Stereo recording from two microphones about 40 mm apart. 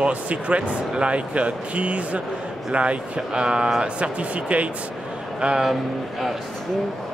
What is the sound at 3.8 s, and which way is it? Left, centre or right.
Speech, right.